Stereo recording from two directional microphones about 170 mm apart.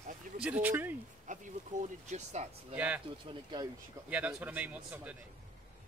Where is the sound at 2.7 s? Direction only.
10° right (ahead or behind).